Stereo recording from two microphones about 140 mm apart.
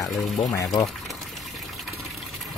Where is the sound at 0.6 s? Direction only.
25° left (ahead or behind).